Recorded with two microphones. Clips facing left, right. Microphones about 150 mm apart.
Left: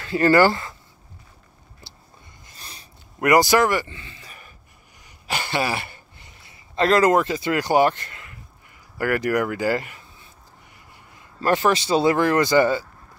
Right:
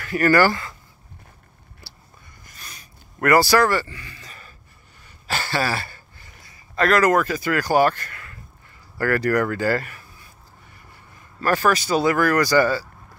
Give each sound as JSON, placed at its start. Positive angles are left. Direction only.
{"t": 0.0, "sound": "speech", "side_deg": 25}
{"t": 1.8, "sound": "a sound", "side_deg": 20}
{"t": 3.2, "sound": "speech", "side_deg": 20}
{"t": 4.2, "sound": "a sound", "side_deg": 15}
{"t": 8.9, "sound": "speech", "side_deg": 15}
{"t": 11.4, "sound": "speech", "side_deg": 20}